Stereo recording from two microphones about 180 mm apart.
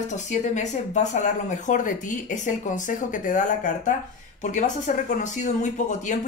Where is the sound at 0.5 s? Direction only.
40° left (ahead or behind).